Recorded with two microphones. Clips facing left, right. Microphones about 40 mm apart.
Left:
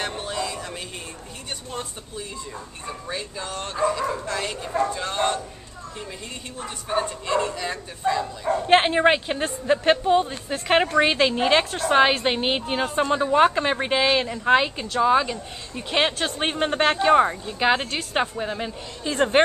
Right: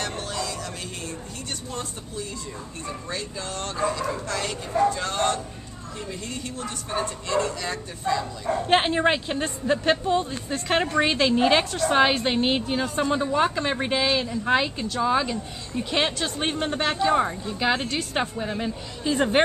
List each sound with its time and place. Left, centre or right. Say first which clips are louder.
0.0 s music: left 2 dB; centre
1.7 s speech: even; centre
12.6 s a woman's voice: left 2 dB; left
13.7 s speech: left 2 dB; centre
14.0 s a woman's voice: left 3 dB; left
14.5 s speech: left 4 dB; centre